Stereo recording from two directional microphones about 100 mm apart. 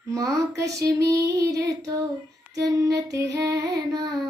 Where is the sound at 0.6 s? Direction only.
35° right (ahead or behind).